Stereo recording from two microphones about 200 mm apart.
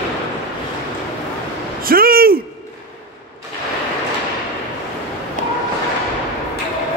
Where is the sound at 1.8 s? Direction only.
45° right (ahead or behind).